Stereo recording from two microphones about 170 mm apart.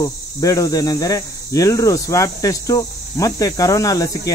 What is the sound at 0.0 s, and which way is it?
Speech, 20° left (ahead or behind).